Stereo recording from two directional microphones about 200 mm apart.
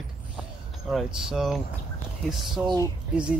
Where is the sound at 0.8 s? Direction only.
Centre (ahead or behind).